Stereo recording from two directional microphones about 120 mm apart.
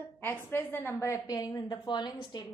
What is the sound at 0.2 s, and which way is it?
A woman's voice, 15° left (ahead or behind).